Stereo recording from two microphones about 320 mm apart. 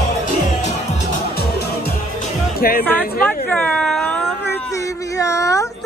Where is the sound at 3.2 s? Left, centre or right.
Centre.